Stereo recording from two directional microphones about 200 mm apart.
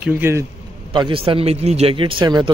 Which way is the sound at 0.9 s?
25° right (ahead or behind).